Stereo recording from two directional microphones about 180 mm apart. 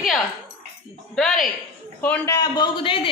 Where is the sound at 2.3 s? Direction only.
20° left (ahead or behind).